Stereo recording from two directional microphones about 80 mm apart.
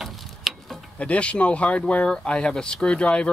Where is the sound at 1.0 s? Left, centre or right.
Centre.